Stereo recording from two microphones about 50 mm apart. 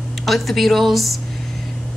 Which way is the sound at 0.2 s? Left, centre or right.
Centre.